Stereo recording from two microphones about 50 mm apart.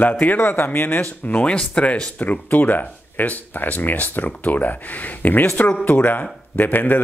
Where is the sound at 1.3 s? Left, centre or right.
Left.